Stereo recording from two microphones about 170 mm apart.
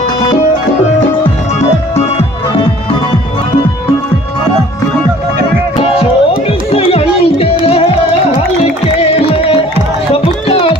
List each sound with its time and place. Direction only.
5.8 s music: 35° left (ahead or behind)
9.0 s music: 35° left (ahead or behind)